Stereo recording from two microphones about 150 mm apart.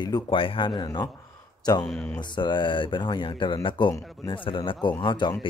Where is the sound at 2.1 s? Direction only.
30° left (ahead or behind).